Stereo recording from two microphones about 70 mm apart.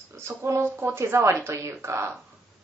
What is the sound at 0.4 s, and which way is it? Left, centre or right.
A woman's voice, right.